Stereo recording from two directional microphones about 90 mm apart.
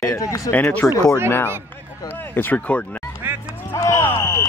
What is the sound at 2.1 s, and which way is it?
Speech, 20° left (ahead or behind).